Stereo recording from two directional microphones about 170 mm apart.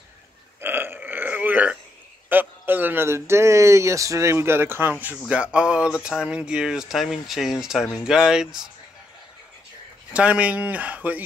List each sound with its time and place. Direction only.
0.6 s burping: 10° right (ahead or behind)
2.2 s speech: 10° right (ahead or behind)
10.1 s speech: 5° right (ahead or behind)